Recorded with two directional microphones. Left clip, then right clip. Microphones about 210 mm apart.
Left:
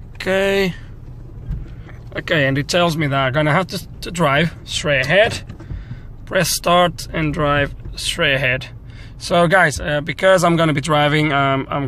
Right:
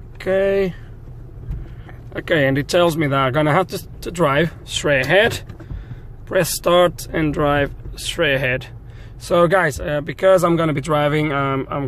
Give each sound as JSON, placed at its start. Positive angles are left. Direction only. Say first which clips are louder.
{"t": 0.2, "sound": "speech", "louder": "even", "side_deg": 5}
{"t": 2.1, "sound": "speech", "louder": "even", "side_deg": -10}